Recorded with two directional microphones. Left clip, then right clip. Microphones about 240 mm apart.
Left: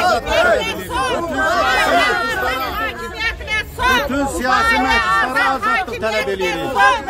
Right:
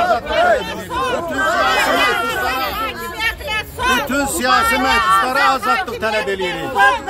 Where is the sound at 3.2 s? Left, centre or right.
Centre.